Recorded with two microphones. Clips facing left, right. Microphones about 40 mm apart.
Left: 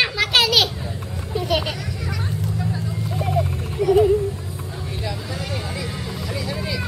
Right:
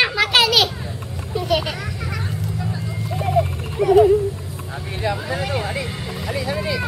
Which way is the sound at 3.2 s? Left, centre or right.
Centre.